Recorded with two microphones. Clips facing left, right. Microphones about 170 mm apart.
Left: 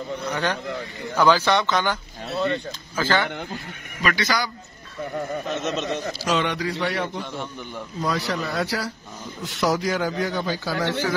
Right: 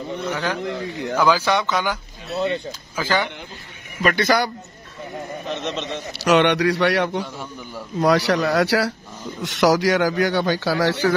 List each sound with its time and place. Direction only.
0.3 s speech: 5° right (ahead or behind)
3.0 s speech: 10° right (ahead or behind)
4.0 s a man's voice: 55° right (ahead or behind)
5.5 s speech: 5° left (ahead or behind)
6.1 s a man's voice: 70° right (ahead or behind)